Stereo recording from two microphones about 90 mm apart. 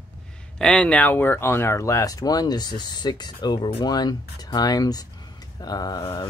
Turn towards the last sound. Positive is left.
turn(degrees=40)  # may be behind; listen again after turning